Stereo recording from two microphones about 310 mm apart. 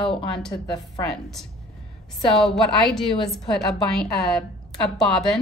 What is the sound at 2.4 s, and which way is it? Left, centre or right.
A woman's voice, centre.